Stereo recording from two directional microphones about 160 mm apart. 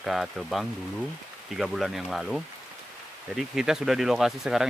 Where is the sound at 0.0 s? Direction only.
Centre (ahead or behind).